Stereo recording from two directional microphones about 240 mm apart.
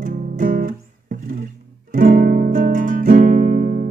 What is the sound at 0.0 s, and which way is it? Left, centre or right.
Guitar, right.